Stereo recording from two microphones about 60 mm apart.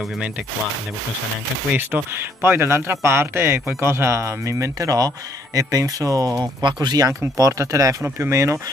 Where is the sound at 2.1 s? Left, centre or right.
Right.